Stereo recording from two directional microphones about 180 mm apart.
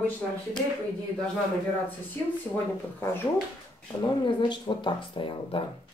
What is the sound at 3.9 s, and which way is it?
Speech, 25° left (ahead or behind).